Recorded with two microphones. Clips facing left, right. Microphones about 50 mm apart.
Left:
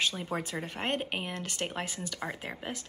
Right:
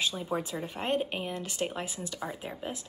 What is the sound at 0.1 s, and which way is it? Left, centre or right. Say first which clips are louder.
Speech: right 2 dB; left.